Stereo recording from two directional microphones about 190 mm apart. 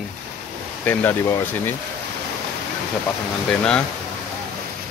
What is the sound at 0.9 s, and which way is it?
Speech, 10° left (ahead or behind).